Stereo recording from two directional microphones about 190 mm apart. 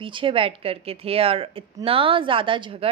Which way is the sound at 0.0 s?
25° right (ahead or behind).